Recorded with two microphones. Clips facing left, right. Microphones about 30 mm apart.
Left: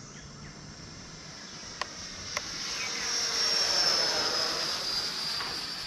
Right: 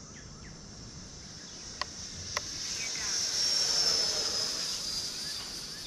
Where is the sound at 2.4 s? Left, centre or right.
Left.